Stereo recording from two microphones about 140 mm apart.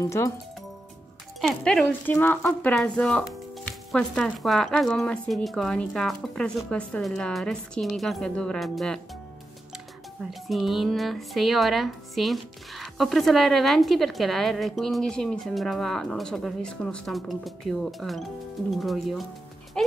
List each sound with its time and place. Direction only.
0.0 s speech: 20° left (ahead or behind)
1.4 s speech: 5° left (ahead or behind)
10.4 s speech: centre (ahead or behind)